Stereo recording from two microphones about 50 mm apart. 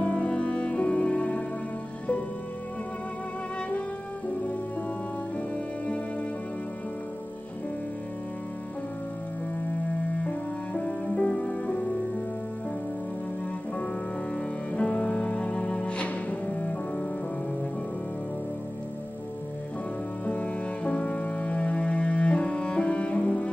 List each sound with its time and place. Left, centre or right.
0.0 s music: left
10.2 s music: centre
14.3 s music: left
20.2 s music: left